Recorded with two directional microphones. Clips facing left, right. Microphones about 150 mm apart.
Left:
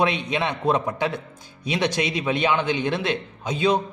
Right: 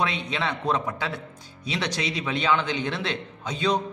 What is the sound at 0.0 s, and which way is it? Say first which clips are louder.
Speech: left 4 dB; 15° left (ahead or behind).